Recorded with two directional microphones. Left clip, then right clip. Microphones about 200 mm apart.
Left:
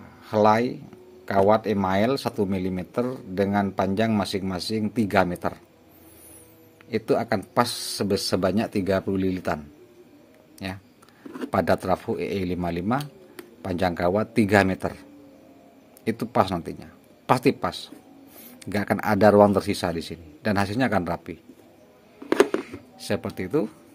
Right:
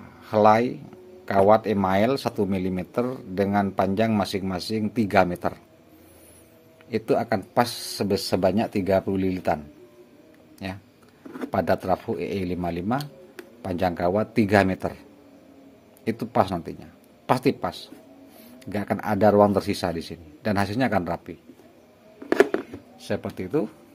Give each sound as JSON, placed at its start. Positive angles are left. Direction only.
{"t": 0.0, "sound": "a sound", "side_deg": 0}
{"t": 1.2, "sound": "speech", "side_deg": 0}
{"t": 6.9, "sound": "speech", "side_deg": 5}
{"t": 10.6, "sound": "a man's voice", "side_deg": 5}
{"t": 16.0, "sound": "a man's voice", "side_deg": 10}
{"t": 22.3, "sound": "a sound", "side_deg": 0}
{"t": 22.9, "sound": "a man's voice", "side_deg": 20}